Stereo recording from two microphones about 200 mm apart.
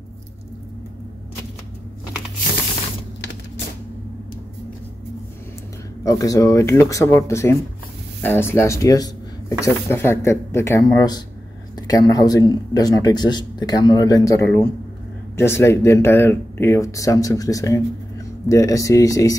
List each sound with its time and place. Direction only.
6.0 s speech: 15° left (ahead or behind)